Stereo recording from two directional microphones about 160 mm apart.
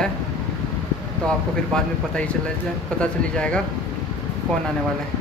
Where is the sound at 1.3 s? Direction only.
5° left (ahead or behind).